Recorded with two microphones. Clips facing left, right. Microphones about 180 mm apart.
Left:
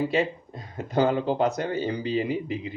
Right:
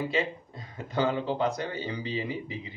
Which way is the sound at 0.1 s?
45° left (ahead or behind).